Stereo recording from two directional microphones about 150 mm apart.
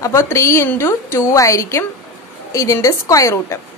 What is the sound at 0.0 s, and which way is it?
A woman's voice, 20° left (ahead or behind).